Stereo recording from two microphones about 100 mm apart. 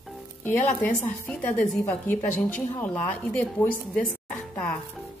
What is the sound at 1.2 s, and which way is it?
Speech, 15° left (ahead or behind).